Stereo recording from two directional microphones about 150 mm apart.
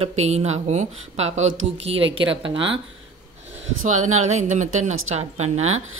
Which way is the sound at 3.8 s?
50° right (ahead or behind).